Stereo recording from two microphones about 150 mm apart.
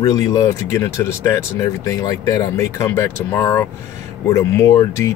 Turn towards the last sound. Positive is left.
turn(degrees=20)  # may be behind; listen again after turning